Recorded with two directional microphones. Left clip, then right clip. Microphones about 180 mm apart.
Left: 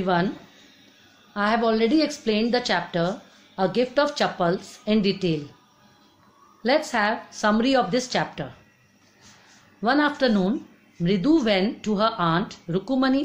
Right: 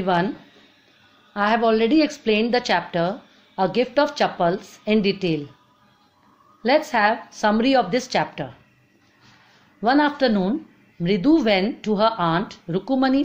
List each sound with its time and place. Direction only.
0.0 s a woman's voice: 30° right (ahead or behind)
1.3 s a woman's voice: 30° right (ahead or behind)
6.6 s a woman's voice: 30° right (ahead or behind)
9.8 s a woman's voice: 30° right (ahead or behind)